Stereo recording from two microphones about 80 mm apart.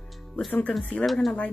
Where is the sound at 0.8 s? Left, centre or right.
Centre.